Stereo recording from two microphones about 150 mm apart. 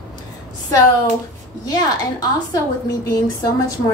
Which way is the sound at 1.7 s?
25° left (ahead or behind).